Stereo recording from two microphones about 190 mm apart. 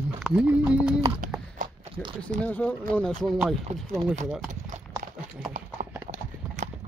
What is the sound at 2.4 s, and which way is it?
Speech, 5° left (ahead or behind).